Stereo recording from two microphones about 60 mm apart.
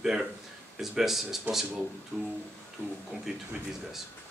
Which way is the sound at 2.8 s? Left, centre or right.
Right.